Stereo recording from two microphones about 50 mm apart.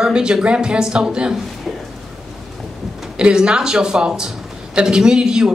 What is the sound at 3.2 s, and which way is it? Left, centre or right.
A woman's voice, centre.